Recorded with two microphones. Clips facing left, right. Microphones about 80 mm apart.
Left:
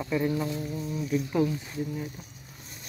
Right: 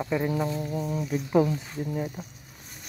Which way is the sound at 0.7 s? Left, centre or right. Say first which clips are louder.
Right 4 dB; right.